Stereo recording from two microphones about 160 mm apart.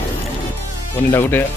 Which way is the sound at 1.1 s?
15° left (ahead or behind).